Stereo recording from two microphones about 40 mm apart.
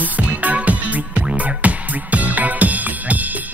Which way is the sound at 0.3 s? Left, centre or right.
Right.